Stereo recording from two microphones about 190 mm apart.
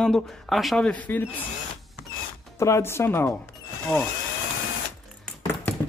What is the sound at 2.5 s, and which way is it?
Speech, 15° left (ahead or behind).